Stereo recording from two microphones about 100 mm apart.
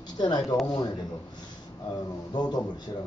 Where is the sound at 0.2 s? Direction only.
45° left (ahead or behind).